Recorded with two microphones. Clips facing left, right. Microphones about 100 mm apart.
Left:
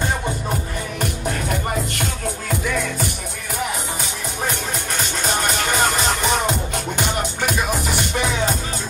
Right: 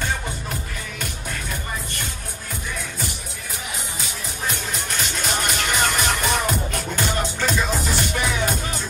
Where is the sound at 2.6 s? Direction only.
90° left.